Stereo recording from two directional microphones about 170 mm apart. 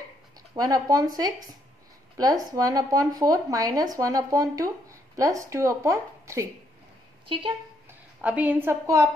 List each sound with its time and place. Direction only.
0.6 s speech: 20° right (ahead or behind)
7.2 s speech: 30° right (ahead or behind)
8.2 s speech: 10° right (ahead or behind)